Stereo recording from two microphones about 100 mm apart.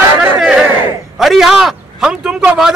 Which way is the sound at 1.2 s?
Centre (ahead or behind).